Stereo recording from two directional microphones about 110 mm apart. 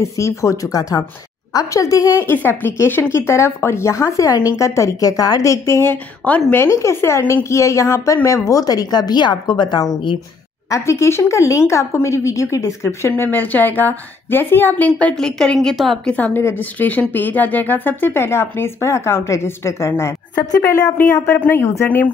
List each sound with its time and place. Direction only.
0.0 s a woman's voice: 25° left (ahead or behind)
2.2 s a woman's voice: 20° left (ahead or behind); by 10.1 s 45° left (ahead or behind)
10.7 s speech: 25° left (ahead or behind)